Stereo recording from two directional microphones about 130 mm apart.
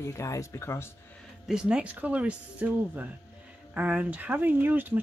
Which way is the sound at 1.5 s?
5° right (ahead or behind).